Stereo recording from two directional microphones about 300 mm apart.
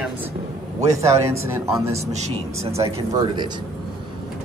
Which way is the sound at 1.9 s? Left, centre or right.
Right.